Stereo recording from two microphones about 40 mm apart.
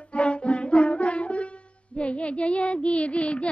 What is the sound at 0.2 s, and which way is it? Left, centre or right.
Music, left.